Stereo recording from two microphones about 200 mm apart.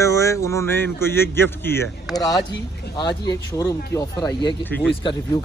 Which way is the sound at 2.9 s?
55° left (ahead or behind).